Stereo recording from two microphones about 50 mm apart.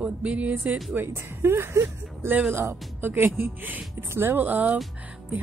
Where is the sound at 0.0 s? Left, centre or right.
Right.